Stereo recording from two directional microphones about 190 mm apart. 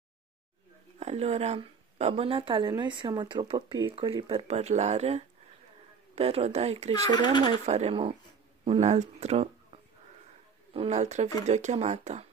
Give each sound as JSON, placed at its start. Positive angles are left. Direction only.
{"t": 0.9, "sound": "a woman's voice", "side_deg": -35}
{"t": 6.9, "sound": "speech", "side_deg": 20}
{"t": 7.6, "sound": "speech", "side_deg": -35}
{"t": 10.7, "sound": "speech", "side_deg": -30}